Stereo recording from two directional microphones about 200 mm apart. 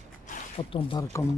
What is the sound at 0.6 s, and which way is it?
Speech, 25° left (ahead or behind).